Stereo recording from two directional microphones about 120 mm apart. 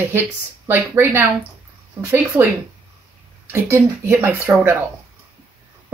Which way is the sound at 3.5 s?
20° right (ahead or behind).